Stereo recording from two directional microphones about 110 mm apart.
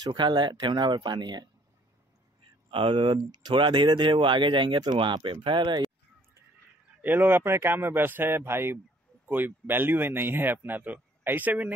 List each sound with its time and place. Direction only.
0.0 s speech: 40° right (ahead or behind)
2.7 s speech: 50° right (ahead or behind)
7.0 s speech: 20° right (ahead or behind)